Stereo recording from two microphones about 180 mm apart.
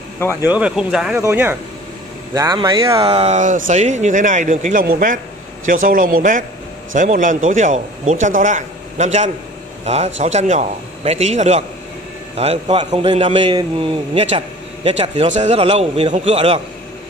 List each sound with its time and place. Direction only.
0.4 s a man's voice: 10° right (ahead or behind)
3.2 s a man's voice: 40° right (ahead or behind)